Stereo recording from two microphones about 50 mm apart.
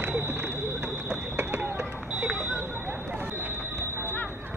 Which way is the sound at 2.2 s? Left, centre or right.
Right.